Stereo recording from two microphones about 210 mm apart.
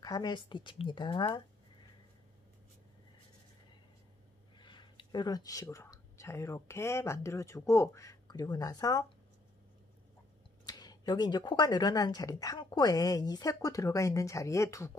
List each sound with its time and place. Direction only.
0.0 s a woman's voice: 20° left (ahead or behind)
4.6 s speech: 20° left (ahead or behind)
10.6 s speech: 20° left (ahead or behind)